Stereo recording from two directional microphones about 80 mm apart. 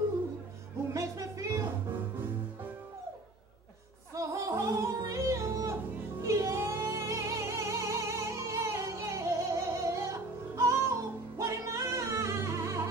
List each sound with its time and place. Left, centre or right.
0.9 s music: right
4.1 s yodeling: right
6.2 s music: right